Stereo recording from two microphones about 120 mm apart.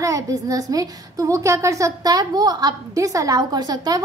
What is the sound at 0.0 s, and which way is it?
A woman's voice, 30° right (ahead or behind).